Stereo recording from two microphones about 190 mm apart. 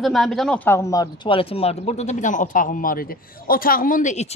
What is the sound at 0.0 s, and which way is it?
Speech, centre (ahead or behind).